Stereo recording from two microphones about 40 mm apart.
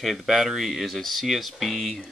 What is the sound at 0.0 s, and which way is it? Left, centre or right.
Speech, centre.